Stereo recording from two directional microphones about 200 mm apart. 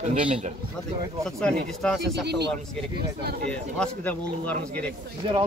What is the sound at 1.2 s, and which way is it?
Speech, 5° left (ahead or behind).